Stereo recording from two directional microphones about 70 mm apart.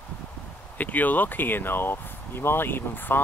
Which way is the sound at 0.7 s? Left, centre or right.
Left.